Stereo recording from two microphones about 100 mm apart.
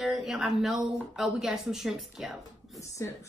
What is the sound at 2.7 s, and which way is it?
Speech, 30° left (ahead or behind).